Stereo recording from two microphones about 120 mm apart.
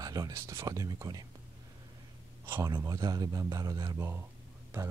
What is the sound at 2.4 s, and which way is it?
Speech, 20° right (ahead or behind).